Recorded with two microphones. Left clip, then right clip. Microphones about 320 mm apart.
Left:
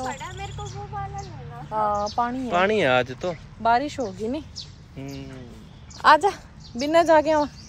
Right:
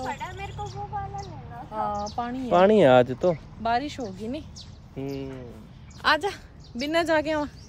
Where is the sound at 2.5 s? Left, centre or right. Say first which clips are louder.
Right 5 dB; right.